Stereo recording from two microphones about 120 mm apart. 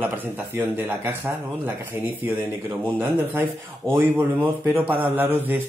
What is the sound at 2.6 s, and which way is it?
Speech, 20° right (ahead or behind).